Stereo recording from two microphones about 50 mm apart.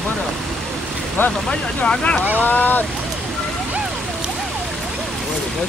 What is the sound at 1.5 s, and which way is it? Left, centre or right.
Speech, centre.